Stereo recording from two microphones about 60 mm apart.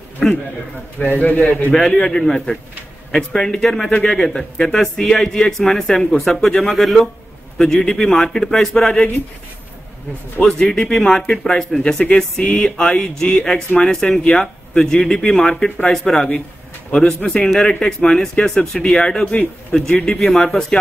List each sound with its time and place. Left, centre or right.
0.2 s speech: centre
1.0 s a man's voice: left
1.7 s a man's voice: centre
10.4 s a man's voice: centre
20.3 s speech: centre